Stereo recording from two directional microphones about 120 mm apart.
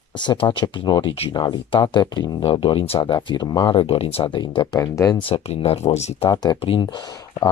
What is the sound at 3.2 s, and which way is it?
Speech, 35° left (ahead or behind).